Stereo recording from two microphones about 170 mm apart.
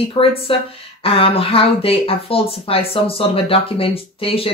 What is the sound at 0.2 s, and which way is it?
Speech, 35° left (ahead or behind).